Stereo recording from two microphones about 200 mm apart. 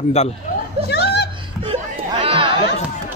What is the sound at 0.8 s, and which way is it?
Speech, 55° left (ahead or behind).